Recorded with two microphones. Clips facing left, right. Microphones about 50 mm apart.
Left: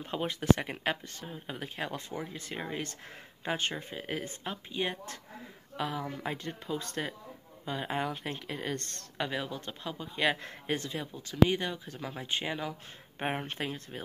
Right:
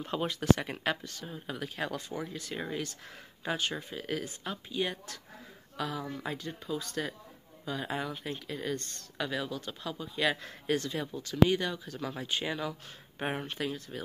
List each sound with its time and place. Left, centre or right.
0.0 s speech: centre; by 7.0 s left
7.6 s speech: left
8.1 s speech: left
9.2 s speech: left
10.8 s speech: centre
13.5 s speech: left